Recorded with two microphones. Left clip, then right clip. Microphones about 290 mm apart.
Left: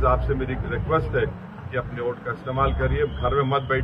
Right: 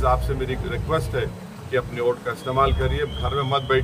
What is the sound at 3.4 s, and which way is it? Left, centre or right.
Speech, right.